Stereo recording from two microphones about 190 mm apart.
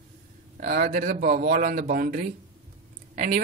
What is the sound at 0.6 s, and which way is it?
Speech, 45° right (ahead or behind).